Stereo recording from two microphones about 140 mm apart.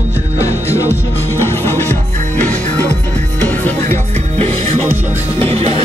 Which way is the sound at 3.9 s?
55° right (ahead or behind).